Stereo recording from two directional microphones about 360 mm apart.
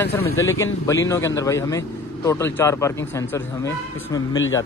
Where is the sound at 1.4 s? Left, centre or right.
Centre.